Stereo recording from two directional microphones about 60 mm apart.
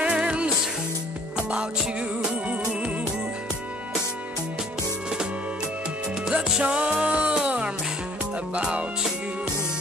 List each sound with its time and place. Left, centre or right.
0.0 s music: centre
1.5 s music: centre
6.2 s music: centre